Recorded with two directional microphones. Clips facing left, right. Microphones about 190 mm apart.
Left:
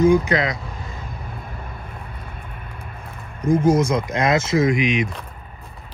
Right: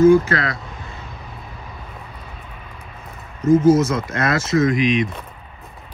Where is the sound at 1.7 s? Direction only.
55° left (ahead or behind).